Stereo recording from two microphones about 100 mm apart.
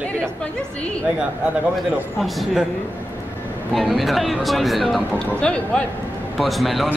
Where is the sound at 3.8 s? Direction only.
Centre (ahead or behind).